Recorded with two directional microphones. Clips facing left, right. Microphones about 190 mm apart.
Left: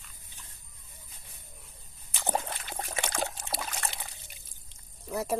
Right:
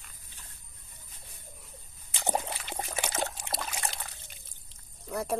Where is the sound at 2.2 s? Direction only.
10° right (ahead or behind).